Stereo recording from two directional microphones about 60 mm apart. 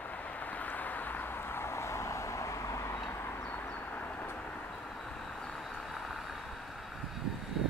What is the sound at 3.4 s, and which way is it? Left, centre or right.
Vehicle, left.